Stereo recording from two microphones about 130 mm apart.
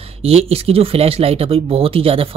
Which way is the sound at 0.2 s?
50° right (ahead or behind).